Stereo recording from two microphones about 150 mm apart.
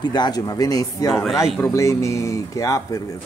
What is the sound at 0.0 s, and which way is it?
Speech, 30° left (ahead or behind).